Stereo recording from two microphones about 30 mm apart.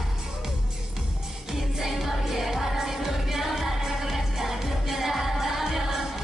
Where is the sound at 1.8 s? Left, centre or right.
Centre.